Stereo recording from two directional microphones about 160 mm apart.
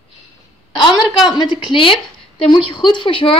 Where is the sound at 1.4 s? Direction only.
30° left (ahead or behind).